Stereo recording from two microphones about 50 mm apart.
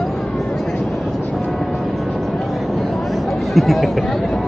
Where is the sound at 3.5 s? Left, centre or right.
Centre.